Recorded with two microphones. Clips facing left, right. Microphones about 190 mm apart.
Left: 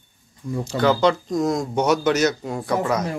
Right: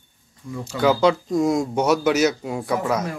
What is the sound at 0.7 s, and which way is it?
Speech, 5° right (ahead or behind).